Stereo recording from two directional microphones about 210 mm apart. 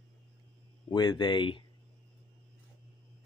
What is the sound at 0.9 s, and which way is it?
Speech, 20° left (ahead or behind).